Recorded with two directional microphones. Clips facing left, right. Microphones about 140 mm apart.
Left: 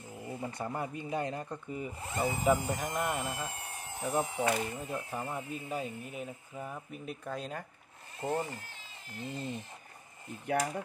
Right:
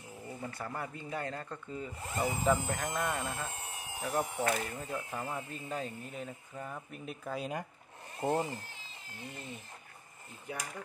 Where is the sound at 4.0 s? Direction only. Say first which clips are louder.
Left 2 dB; 10° left (ahead or behind); by 7.6 s 5° right (ahead or behind).